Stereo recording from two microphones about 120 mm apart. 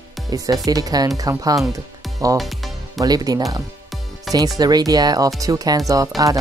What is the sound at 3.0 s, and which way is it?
Speech, 30° right (ahead or behind).